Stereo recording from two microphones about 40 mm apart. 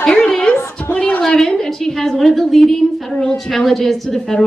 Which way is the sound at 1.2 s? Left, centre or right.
Centre.